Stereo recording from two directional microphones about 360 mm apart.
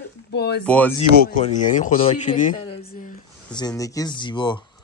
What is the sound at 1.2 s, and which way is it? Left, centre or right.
Speech, left.